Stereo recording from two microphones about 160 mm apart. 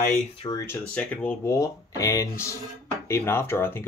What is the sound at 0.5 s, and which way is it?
Speech, 20° left (ahead or behind).